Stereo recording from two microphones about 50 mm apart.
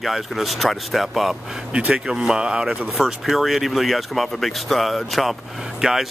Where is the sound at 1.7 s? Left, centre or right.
Centre.